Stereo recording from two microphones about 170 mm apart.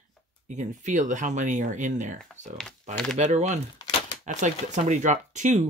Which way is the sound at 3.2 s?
45° right (ahead or behind).